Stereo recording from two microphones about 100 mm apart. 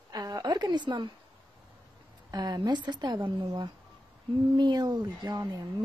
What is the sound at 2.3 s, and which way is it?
Speech, 45° right (ahead or behind).